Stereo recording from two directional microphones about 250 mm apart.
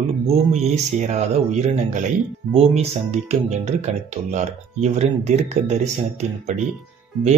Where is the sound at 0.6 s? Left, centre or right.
Right.